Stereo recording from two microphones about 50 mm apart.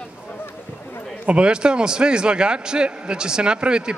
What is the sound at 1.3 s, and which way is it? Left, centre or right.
A man's voice, centre.